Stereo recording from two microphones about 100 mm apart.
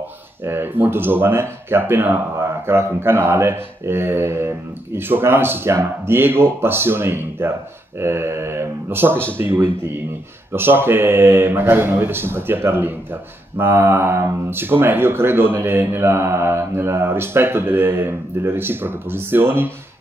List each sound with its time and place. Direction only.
0.4 s speech: 20° right (ahead or behind)